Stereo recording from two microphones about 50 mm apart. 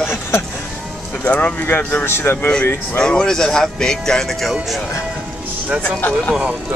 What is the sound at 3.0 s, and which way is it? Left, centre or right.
Speech, centre.